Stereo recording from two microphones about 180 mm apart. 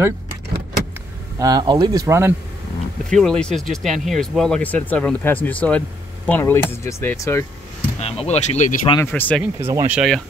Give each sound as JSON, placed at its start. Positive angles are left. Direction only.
{"t": 1.4, "sound": "speech", "side_deg": -25}
{"t": 3.1, "sound": "speech", "side_deg": 5}
{"t": 8.0, "sound": "speech", "side_deg": 35}
{"t": 8.9, "sound": "speech", "side_deg": 10}
{"t": 9.4, "sound": "speech", "side_deg": -15}
{"t": 9.9, "sound": "speech", "side_deg": 0}